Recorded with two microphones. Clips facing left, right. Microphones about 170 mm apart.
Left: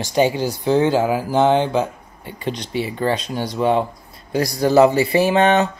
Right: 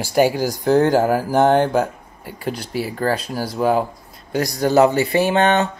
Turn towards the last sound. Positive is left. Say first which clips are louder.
# left 1 dB
turn(degrees=0)  # may be behind; listen again after turning